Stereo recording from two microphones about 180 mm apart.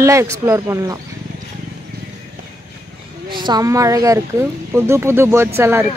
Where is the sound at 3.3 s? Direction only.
25° right (ahead or behind).